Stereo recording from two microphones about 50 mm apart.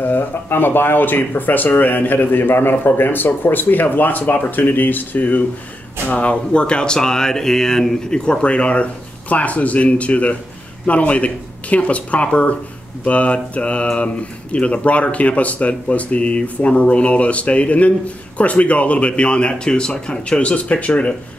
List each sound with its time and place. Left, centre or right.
0.0 s speech: left
6.0 s speech: left